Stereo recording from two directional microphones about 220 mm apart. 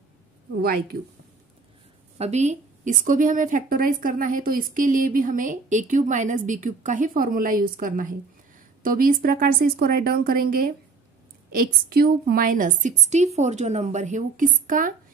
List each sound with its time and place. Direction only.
0.6 s a woman's voice: 40° right (ahead or behind)
2.1 s a woman's voice: 30° right (ahead or behind)